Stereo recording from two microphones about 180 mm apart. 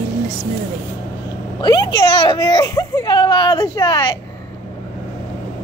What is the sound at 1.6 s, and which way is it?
Speech, 25° left (ahead or behind).